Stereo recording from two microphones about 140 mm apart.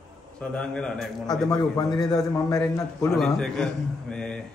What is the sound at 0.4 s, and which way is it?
Speech, 5° left (ahead or behind).